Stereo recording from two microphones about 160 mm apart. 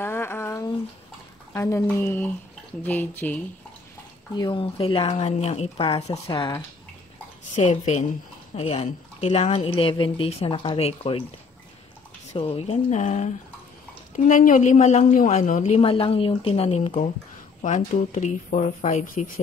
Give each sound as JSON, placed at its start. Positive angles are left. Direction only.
{"t": 0.0, "sound": "a sound", "side_deg": 15}
{"t": 1.5, "sound": "speech", "side_deg": 15}
{"t": 4.4, "sound": "a woman's voice", "side_deg": 30}
{"t": 7.5, "sound": "a woman's voice", "side_deg": 40}
{"t": 12.3, "sound": "a woman's voice", "side_deg": 40}